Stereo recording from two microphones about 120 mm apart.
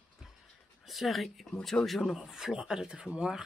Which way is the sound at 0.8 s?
Centre (ahead or behind).